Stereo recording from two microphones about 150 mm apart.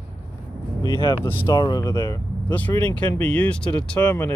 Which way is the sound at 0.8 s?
30° left (ahead or behind).